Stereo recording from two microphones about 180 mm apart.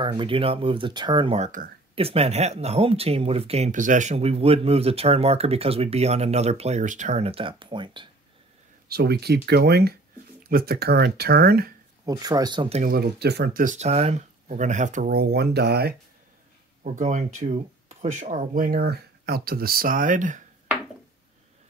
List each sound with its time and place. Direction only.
0.0 s speech: 25° right (ahead or behind)
8.8 s speech: 60° right (ahead or behind)
12.1 s speech: 20° right (ahead or behind)
12.8 s speech: 60° right (ahead or behind)
16.8 s speech: 40° right (ahead or behind)